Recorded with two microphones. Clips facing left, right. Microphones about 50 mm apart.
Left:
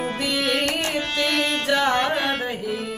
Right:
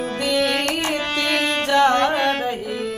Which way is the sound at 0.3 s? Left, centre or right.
Centre.